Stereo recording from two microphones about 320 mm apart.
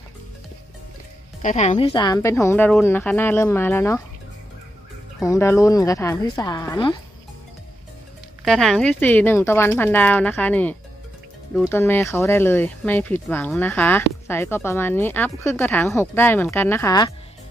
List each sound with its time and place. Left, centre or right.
1.4 s speech: left
5.2 s speech: centre
8.5 s speech: centre